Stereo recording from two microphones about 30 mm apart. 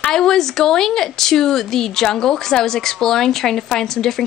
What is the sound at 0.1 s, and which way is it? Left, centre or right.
Speech, centre.